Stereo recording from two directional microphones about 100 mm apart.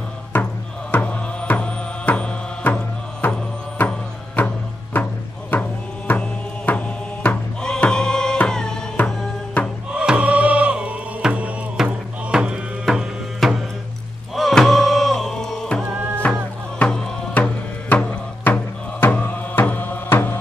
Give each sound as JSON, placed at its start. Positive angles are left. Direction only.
{"t": 0.9, "sound": "music", "side_deg": 15}
{"t": 9.9, "sound": "music", "side_deg": -10}
{"t": 16.2, "sound": "music", "side_deg": 15}